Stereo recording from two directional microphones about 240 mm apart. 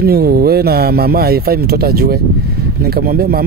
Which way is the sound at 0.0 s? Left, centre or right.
Right.